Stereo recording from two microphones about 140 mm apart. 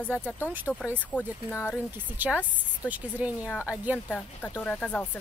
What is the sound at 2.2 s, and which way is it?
Speech, 15° right (ahead or behind).